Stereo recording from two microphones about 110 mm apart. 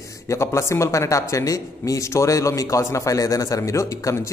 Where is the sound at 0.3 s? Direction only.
25° left (ahead or behind).